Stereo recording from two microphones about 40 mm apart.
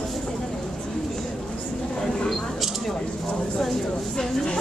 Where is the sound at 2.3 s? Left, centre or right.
Centre.